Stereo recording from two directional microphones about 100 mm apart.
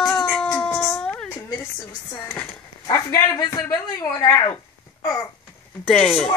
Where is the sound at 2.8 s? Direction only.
35° left (ahead or behind).